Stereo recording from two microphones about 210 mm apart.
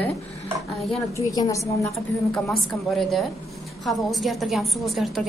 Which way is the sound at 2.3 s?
Centre (ahead or behind).